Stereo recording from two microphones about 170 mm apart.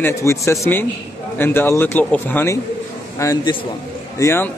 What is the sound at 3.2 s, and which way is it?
A man's voice, 20° left (ahead or behind).